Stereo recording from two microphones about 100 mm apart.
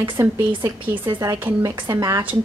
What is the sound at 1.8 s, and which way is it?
Speech, 40° right (ahead or behind).